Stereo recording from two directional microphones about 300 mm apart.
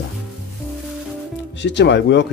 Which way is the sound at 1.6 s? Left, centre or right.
Left.